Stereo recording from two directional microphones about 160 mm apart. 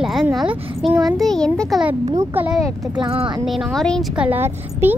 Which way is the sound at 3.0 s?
30° right (ahead or behind).